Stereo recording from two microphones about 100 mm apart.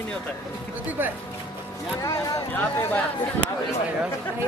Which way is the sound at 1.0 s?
20° right (ahead or behind).